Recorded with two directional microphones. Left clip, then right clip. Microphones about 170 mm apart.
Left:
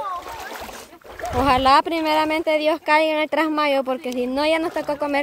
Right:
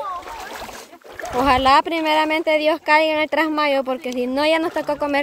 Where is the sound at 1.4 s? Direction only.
Centre (ahead or behind).